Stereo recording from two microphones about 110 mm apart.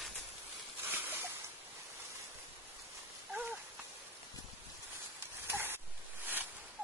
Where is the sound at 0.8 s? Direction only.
20° right (ahead or behind).